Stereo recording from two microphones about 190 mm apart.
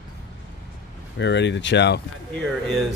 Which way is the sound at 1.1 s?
65° left (ahead or behind).